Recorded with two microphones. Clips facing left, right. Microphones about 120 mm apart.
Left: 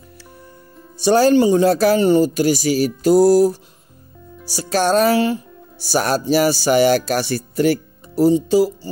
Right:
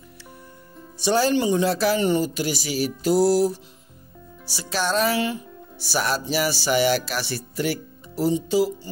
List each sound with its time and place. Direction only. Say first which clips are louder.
0.9 s speech: left 7 dB; 45° left (ahead or behind)